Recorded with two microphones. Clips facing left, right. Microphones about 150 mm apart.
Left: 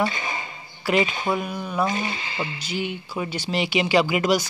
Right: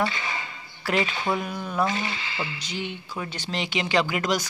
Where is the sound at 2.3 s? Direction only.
20° left (ahead or behind).